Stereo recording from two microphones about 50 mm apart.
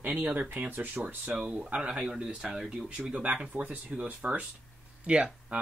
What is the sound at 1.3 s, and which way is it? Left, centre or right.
Speech, centre.